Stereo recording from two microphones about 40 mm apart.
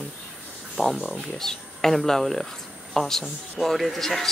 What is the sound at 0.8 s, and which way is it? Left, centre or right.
Speech, centre.